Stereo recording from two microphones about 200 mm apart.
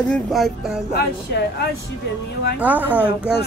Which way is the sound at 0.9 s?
60° left (ahead or behind).